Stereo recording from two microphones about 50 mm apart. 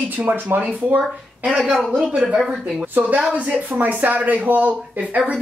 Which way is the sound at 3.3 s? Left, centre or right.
Right.